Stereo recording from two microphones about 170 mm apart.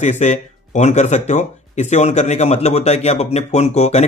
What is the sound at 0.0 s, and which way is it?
Speech, 45° left (ahead or behind).